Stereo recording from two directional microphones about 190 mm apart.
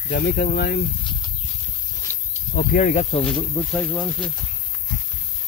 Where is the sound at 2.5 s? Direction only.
50° left (ahead or behind).